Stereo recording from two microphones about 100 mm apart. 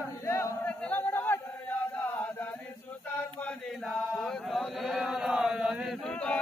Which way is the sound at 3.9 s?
Centre (ahead or behind).